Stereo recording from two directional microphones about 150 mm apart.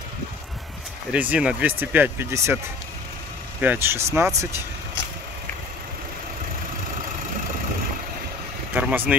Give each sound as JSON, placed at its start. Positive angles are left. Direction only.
{"t": 1.1, "sound": "speech", "side_deg": -10}
{"t": 3.6, "sound": "speech", "side_deg": -15}
{"t": 8.7, "sound": "speech", "side_deg": -10}